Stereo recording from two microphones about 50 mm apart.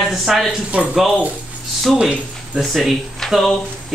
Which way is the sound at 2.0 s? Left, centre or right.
Centre.